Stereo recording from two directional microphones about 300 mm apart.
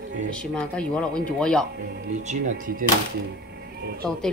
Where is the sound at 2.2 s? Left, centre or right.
Right.